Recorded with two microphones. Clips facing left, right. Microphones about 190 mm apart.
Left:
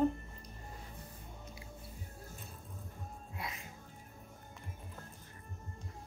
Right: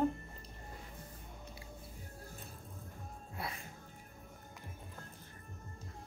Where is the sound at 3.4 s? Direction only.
35° right (ahead or behind).